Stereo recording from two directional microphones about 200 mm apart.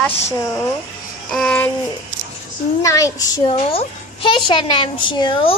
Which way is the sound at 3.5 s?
30° left (ahead or behind).